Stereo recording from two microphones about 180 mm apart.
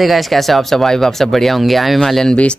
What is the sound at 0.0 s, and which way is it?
Speech, centre (ahead or behind).